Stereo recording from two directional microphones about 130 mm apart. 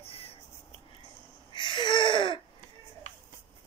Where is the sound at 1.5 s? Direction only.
35° left (ahead or behind).